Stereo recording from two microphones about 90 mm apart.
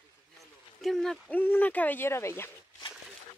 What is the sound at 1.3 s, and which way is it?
Speech, 20° left (ahead or behind).